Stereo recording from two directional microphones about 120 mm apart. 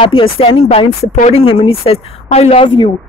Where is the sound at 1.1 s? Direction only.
65° left (ahead or behind).